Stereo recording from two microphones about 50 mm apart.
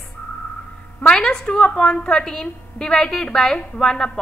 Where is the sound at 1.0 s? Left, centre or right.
Centre.